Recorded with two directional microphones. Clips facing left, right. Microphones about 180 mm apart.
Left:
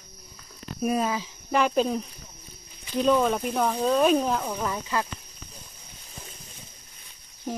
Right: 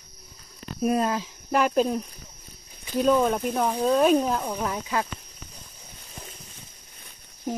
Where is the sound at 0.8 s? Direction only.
Centre (ahead or behind).